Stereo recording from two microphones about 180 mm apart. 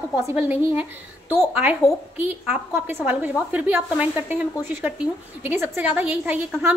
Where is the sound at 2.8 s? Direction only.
10° right (ahead or behind).